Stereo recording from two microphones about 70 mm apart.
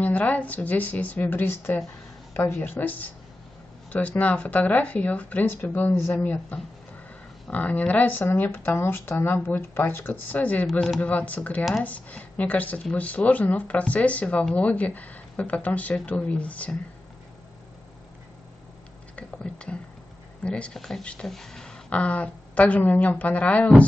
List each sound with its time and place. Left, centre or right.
0.0 s speech: left
10.7 s speech: centre
11.0 s speech: left
19.1 s speech: centre